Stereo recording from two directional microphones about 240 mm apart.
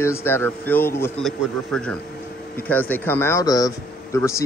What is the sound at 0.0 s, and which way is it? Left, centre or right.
Speech, centre.